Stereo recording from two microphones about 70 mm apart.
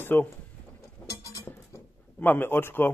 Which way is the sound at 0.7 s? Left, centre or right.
Left.